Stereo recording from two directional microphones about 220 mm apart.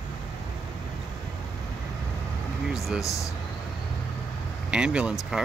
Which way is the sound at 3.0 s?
15° left (ahead or behind).